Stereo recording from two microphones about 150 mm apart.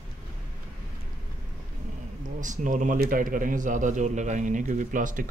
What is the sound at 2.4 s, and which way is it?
Speech, 60° right (ahead or behind).